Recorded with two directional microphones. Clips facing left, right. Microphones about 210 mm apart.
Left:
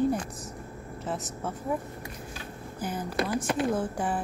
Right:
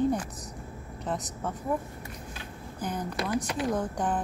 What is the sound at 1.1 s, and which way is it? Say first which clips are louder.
Speech: right 1 dB; 5° left (ahead or behind).